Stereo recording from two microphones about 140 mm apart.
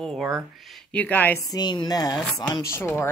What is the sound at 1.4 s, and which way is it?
A woman's voice, 30° left (ahead or behind).